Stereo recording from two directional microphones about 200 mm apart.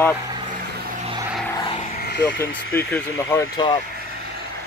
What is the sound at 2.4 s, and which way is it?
Speech, 10° left (ahead or behind).